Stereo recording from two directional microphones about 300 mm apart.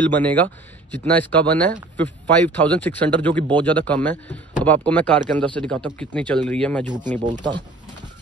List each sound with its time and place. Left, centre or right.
0.1 s speech: centre
7.1 s speech: right